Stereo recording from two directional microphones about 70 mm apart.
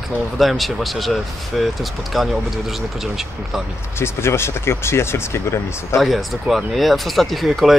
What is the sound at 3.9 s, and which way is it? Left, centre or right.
Speech, left.